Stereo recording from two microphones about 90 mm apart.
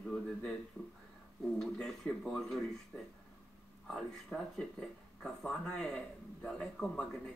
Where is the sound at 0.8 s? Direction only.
15° left (ahead or behind).